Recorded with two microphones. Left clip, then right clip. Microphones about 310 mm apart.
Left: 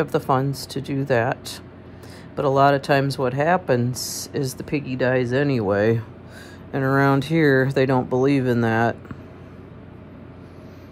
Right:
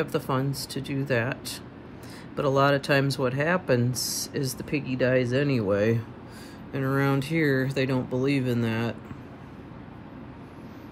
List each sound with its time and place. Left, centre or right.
0.0 s speech: centre